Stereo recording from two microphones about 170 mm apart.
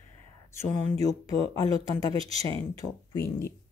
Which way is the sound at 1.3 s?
20° left (ahead or behind).